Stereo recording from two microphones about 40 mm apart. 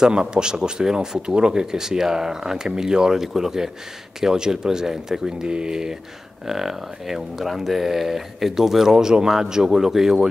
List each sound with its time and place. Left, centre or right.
0.0 s speech: centre